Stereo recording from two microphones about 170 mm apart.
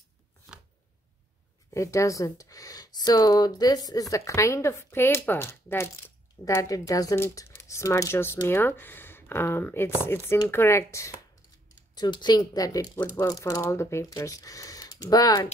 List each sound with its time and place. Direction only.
1.7 s speech: 20° left (ahead or behind)